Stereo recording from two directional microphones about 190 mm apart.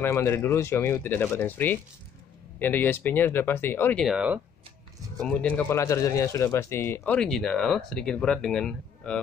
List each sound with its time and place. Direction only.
0.0 s speech: 15° left (ahead or behind)
7.2 s speech: 5° left (ahead or behind)